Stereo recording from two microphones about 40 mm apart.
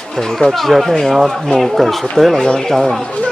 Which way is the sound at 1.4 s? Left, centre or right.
Centre.